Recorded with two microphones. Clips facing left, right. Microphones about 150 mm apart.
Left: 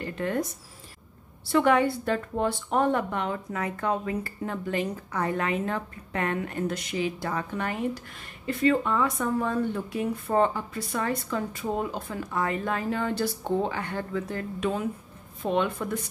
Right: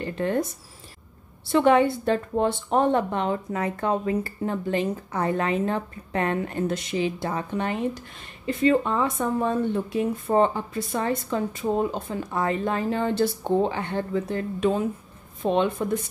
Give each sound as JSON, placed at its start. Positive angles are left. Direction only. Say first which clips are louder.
{"t": 0.0, "sound": "speech", "louder": "right 3 dB", "side_deg": -30}
{"t": 1.5, "sound": "a woman's voice", "louder": "right 3 dB", "side_deg": -25}